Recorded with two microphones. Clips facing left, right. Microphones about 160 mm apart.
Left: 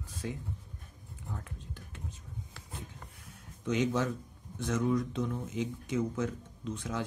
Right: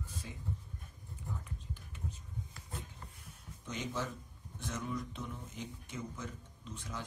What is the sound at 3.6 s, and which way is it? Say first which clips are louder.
Speech: left 10 dB; 85° left.